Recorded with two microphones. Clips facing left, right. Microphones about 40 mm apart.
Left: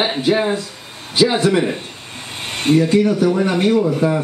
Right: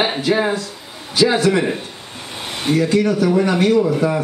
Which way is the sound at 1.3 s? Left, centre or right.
Centre.